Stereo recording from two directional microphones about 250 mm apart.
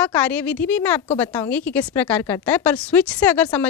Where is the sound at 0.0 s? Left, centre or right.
Centre.